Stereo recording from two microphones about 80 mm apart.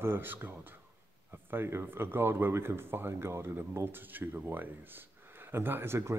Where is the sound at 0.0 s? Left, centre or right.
Right.